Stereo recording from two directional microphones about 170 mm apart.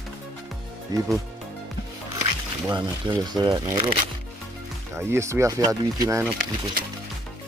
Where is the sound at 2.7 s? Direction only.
25° right (ahead or behind).